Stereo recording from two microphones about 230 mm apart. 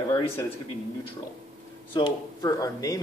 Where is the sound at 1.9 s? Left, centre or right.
Centre.